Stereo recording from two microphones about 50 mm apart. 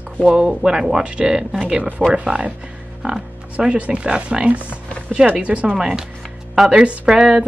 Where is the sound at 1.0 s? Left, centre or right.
Right.